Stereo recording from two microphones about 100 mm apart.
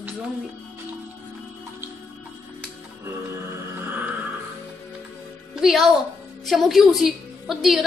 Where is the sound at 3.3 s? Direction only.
20° right (ahead or behind).